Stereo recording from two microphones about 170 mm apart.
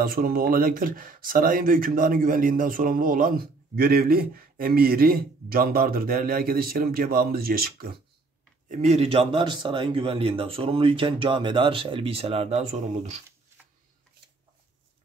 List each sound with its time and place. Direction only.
0.0 s speech: 60° right (ahead or behind)
8.6 s speech: 45° right (ahead or behind)